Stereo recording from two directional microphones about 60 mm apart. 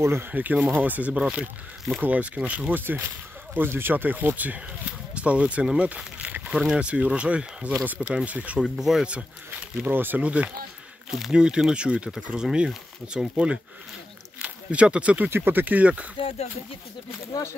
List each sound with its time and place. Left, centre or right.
0.0 s speech: right
0.3 s speech: right
1.2 s speech: centre
8.5 s speech: centre
9.8 s speech: right
10.2 s speech: right
11.1 s speech: centre
11.3 s speech: centre
15.2 s speech: right